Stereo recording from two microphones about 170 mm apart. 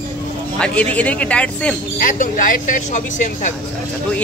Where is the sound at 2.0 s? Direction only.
50° left (ahead or behind).